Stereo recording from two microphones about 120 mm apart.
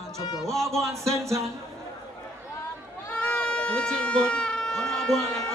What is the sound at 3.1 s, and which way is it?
Goat, 10° left (ahead or behind).